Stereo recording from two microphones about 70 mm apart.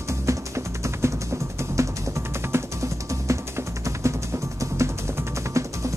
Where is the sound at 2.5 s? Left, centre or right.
Right.